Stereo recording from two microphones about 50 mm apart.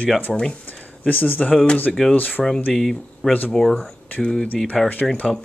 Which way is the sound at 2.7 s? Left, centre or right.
Centre.